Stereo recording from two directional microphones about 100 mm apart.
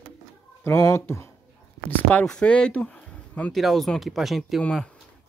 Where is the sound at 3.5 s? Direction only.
Centre (ahead or behind).